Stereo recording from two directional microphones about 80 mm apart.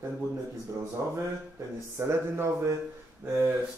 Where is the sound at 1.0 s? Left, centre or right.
Right.